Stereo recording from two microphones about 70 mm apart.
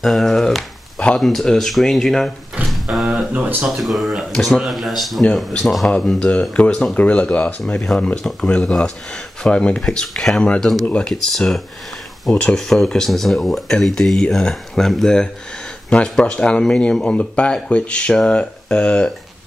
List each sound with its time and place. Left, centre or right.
0.0 s speech: centre
0.9 s a sound: centre
1.2 s speech: centre
2.7 s a sound: centre
3.6 s speech: centre
7.6 s speech: centre
10.9 s speech: centre
14.2 s speech: centre
14.5 s speech: centre